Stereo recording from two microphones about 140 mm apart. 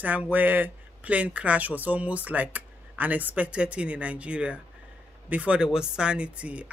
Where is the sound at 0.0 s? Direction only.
10° right (ahead or behind).